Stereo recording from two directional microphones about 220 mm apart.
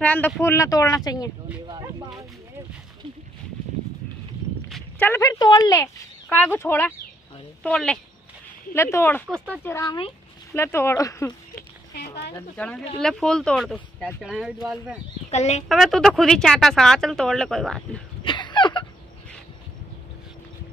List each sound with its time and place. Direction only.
0.0 s speech: 10° left (ahead or behind)
4.6 s speech: 5° left (ahead or behind)
11.9 s a sound: 50° left (ahead or behind)
12.4 s speech: 5° left (ahead or behind)
15.3 s a woman's voice: 30° left (ahead or behind)
15.7 s speech: centre (ahead or behind)
18.2 s a sound: 20° left (ahead or behind)